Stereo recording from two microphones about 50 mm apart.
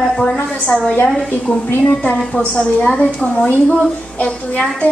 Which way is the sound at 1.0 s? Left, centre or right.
Centre.